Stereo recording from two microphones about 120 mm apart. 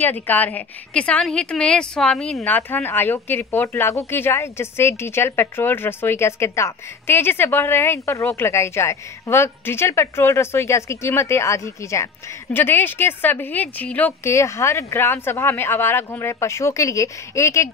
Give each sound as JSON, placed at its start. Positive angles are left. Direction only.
{"t": 0.0, "sound": "a woman's voice", "side_deg": 15}